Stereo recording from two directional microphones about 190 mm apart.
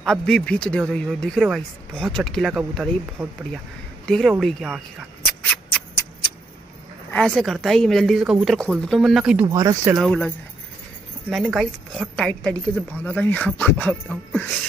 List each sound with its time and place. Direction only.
0.0 s a woman's voice: 5° left (ahead or behind)
5.4 s a sound: 10° left (ahead or behind)
7.1 s a woman's voice: 5° left (ahead or behind)
9.5 s speech: 20° right (ahead or behind)
9.9 s a woman's voice: centre (ahead or behind)